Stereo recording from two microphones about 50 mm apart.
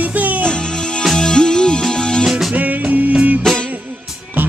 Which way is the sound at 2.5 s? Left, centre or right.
Right.